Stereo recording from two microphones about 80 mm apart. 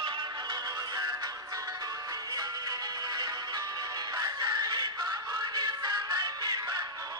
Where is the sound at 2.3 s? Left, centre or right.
Right.